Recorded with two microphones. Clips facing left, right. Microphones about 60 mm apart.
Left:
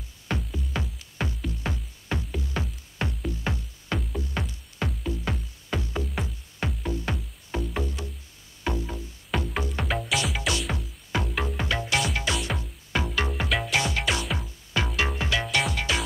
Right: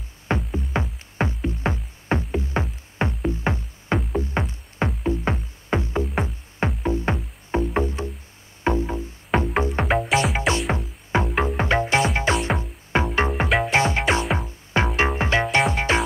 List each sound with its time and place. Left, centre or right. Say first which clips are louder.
0.5 s music: right 6 dB; right